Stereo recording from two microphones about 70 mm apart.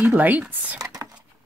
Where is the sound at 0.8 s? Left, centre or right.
Right.